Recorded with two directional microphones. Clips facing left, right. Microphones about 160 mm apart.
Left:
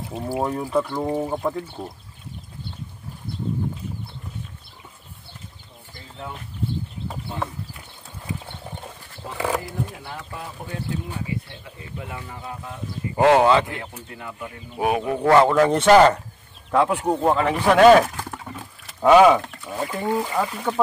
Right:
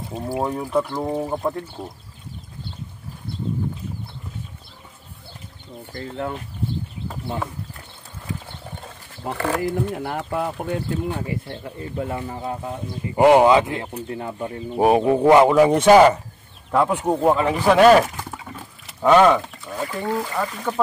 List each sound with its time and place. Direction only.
0.1 s speech: centre (ahead or behind)
5.9 s speech: 60° right (ahead or behind)
9.7 s speech: 60° right (ahead or behind)
11.4 s speech: 45° right (ahead or behind)
13.1 s speech: 15° right (ahead or behind)
13.7 s speech: 30° right (ahead or behind)
15.0 s speech: 20° right (ahead or behind); by 19.4 s 5° left (ahead or behind)
19.8 s speech: 15° left (ahead or behind)